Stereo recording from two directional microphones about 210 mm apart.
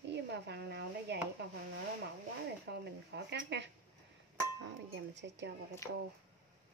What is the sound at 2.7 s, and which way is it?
Speech, 55° right (ahead or behind).